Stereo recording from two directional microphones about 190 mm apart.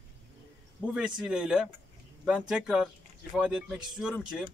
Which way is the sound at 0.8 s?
5° right (ahead or behind).